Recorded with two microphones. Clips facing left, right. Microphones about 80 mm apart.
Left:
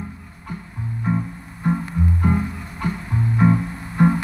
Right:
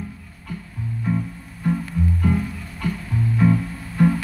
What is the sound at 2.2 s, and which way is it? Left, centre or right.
Music, left.